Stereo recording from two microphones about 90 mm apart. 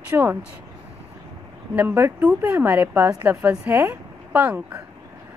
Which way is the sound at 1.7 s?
25° right (ahead or behind).